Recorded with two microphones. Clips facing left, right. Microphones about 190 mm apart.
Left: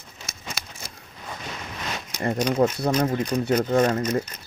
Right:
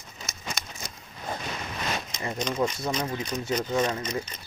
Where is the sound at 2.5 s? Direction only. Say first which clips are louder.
Left 6 dB; 60° left (ahead or behind).